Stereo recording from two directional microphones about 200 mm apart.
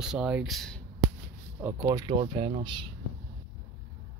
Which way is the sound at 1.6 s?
15° right (ahead or behind).